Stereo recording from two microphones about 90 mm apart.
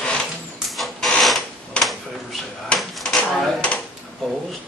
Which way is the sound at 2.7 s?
Centre (ahead or behind).